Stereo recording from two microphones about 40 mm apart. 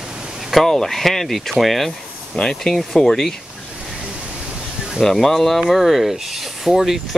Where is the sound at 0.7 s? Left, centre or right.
Centre.